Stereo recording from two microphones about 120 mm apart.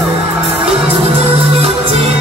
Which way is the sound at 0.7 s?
55° right (ahead or behind).